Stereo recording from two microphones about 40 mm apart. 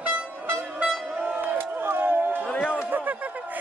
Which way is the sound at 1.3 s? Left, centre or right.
Right.